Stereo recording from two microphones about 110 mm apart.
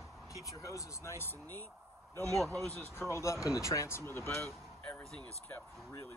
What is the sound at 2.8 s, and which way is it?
Speech, 25° left (ahead or behind).